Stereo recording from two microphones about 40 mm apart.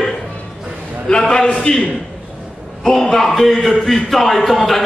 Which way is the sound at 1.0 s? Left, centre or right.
Centre.